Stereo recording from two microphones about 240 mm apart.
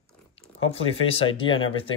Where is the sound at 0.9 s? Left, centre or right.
Left.